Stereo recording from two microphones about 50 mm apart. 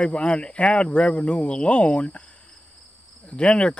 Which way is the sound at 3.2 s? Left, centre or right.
Left.